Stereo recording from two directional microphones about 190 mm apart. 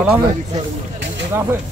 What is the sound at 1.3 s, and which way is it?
Speech, 10° right (ahead or behind).